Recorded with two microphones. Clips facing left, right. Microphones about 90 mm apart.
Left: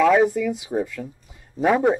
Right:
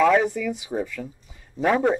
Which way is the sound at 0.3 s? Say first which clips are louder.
Left 4 dB; 5° left (ahead or behind).